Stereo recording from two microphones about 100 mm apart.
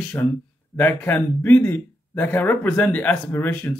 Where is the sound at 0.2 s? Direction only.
20° left (ahead or behind).